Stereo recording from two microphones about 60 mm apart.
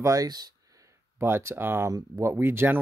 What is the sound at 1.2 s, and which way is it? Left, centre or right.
Speech, right.